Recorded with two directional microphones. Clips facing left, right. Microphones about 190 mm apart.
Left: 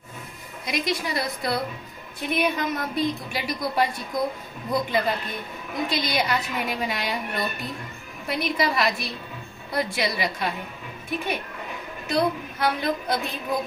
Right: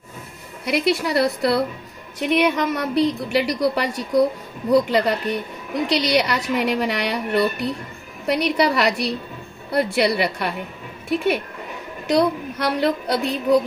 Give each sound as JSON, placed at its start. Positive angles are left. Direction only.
{"t": 0.7, "sound": "a woman's voice", "side_deg": -70}